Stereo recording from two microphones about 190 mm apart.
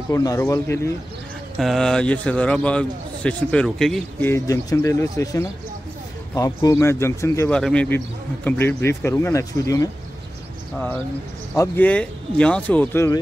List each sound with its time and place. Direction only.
0.1 s speech: 15° left (ahead or behind)
1.6 s a man's voice: centre (ahead or behind)
4.3 s speech: 15° left (ahead or behind)
11.5 s speech: 15° left (ahead or behind)